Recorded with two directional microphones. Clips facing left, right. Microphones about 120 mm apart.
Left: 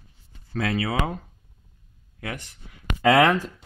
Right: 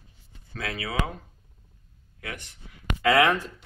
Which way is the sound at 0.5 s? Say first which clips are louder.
Left 8 dB; 40° left (ahead or behind).